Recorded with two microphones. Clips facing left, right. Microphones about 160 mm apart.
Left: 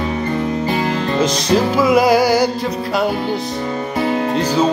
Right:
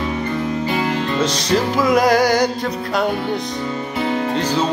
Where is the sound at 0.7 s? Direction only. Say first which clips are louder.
Left 2 dB; 35° left (ahead or behind).